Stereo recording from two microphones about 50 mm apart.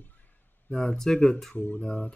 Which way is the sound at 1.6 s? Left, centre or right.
Left.